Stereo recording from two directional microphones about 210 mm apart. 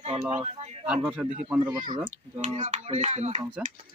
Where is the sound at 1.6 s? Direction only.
20° right (ahead or behind).